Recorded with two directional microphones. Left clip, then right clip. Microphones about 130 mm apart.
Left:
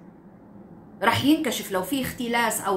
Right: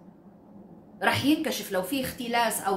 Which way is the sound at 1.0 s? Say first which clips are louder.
Left 3 dB; 15° right (ahead or behind).